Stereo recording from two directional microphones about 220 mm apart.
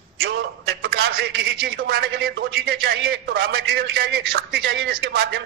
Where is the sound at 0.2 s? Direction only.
45° right (ahead or behind).